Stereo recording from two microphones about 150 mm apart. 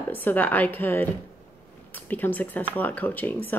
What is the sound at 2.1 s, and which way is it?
Speech, 10° left (ahead or behind).